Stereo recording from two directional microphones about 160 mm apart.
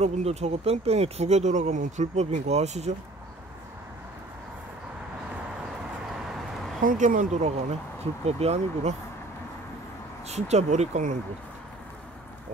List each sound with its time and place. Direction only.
0.0 s speech: 40° right (ahead or behind)
6.8 s speech: 60° right (ahead or behind)
8.0 s speech: 40° right (ahead or behind)
10.2 s speech: 45° right (ahead or behind)